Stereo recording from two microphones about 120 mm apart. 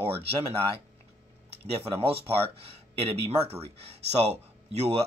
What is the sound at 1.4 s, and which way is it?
Speech, 55° right (ahead or behind).